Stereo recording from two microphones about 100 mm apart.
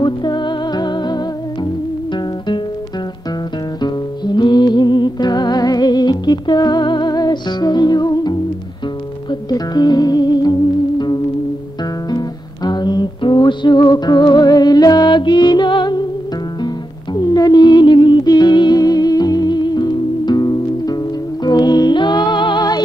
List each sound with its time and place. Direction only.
0.0 s music: 50° left (ahead or behind)
3.8 s music: 45° left (ahead or behind)
12.1 s music: 45° left (ahead or behind)